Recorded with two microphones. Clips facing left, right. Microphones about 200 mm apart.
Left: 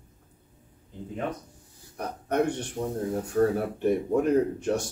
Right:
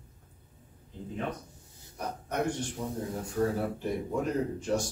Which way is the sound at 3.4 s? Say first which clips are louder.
Left 6 dB; 65° left (ahead or behind).